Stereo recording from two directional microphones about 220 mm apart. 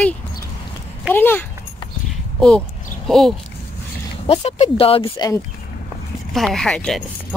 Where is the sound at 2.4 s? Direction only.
5° left (ahead or behind).